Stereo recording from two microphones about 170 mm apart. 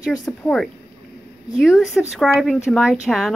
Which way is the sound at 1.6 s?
5° right (ahead or behind).